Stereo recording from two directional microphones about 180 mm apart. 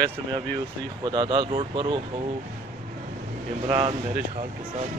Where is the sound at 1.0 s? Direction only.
25° right (ahead or behind).